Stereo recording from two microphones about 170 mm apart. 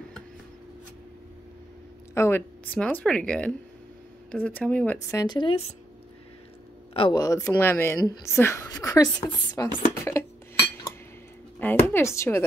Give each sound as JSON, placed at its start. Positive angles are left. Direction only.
{"t": 2.1, "sound": "speech", "side_deg": 15}
{"t": 5.1, "sound": "a woman's voice", "side_deg": 25}
{"t": 6.9, "sound": "a sound", "side_deg": 30}
{"t": 7.2, "sound": "a woman's voice", "side_deg": 20}
{"t": 10.0, "sound": "cutlery", "side_deg": 15}
{"t": 11.6, "sound": "speech", "side_deg": 15}